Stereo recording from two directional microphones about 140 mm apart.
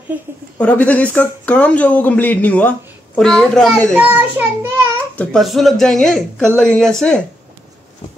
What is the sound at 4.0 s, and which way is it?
Speech, 15° right (ahead or behind).